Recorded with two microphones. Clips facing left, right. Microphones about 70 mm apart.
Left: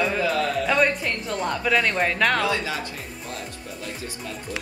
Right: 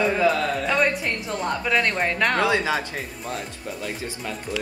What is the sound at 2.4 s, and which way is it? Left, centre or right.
Speech, right.